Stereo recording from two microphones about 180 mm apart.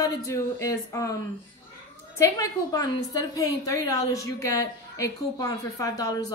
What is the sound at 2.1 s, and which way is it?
A woman's voice, 20° left (ahead or behind).